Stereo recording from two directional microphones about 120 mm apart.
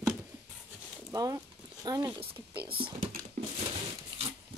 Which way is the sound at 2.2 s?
50° right (ahead or behind).